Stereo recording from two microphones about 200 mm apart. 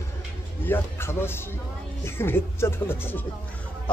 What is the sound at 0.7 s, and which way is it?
Speech, 10° left (ahead or behind).